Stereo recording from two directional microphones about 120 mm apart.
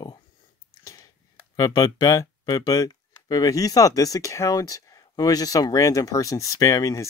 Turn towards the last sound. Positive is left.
turn(degrees=25)  # may be behind; listen again after turning